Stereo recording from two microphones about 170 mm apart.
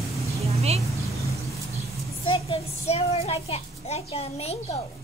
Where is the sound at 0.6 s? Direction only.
40° right (ahead or behind).